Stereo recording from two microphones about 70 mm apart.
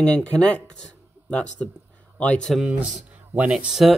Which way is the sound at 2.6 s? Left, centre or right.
Centre.